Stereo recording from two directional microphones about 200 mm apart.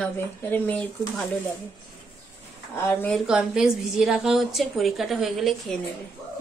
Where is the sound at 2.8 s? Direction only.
10° left (ahead or behind).